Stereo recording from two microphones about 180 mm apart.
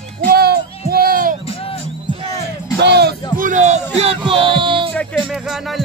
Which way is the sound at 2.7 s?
65° right (ahead or behind).